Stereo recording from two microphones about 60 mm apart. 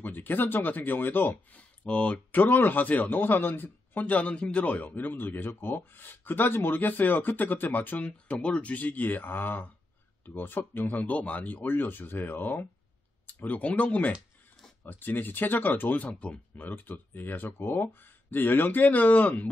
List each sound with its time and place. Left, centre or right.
0.0 s a man's voice: left
1.9 s speech: left
2.3 s a man's voice: left
16.6 s a man's voice: left